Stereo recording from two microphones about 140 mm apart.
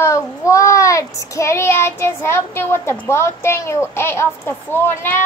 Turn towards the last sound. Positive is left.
turn(degrees=15)  # may be behind; listen again after turning